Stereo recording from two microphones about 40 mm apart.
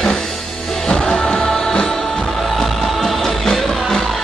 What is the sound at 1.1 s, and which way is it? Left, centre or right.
Music, centre.